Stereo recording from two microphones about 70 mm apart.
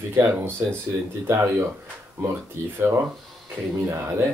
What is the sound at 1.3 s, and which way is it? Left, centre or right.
Speech, right.